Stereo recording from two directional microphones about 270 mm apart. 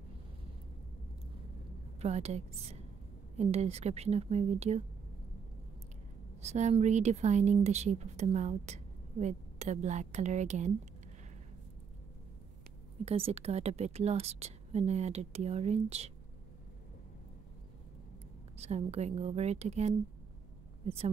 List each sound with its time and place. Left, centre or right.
2.0 s a woman's voice: right
6.4 s a woman's voice: right
13.0 s a woman's voice: right
18.6 s a woman's voice: right